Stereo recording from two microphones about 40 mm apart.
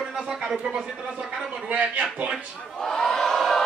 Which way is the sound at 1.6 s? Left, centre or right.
Right.